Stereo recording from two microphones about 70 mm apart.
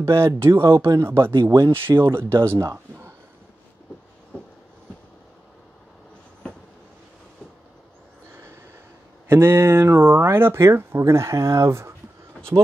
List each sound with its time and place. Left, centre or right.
0.0 s speech: right
9.3 s speech: right